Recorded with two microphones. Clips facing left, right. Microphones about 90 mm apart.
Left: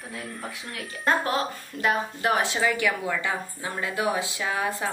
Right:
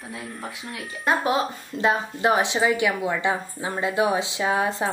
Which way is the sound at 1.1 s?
20° right (ahead or behind).